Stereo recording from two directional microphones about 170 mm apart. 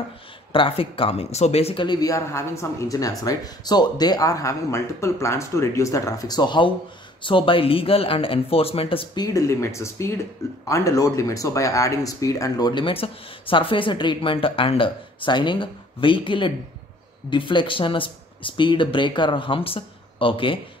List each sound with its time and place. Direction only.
0.5 s speech: 30° left (ahead or behind)